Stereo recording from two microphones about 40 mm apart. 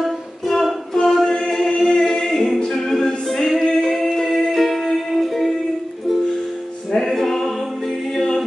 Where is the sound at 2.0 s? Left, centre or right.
Centre.